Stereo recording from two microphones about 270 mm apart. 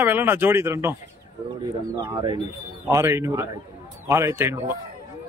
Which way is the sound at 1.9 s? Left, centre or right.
Centre.